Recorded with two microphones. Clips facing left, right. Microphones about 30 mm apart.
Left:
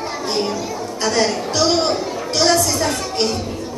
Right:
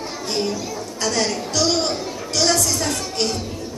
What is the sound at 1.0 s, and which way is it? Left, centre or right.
A woman's voice, centre.